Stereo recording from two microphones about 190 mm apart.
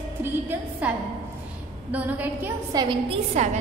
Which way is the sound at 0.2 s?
10° right (ahead or behind).